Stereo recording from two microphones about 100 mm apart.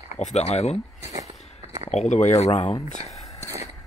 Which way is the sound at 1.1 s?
35° right (ahead or behind).